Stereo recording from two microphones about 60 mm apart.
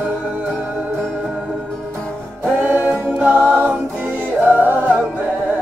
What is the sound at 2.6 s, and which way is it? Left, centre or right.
Music, right.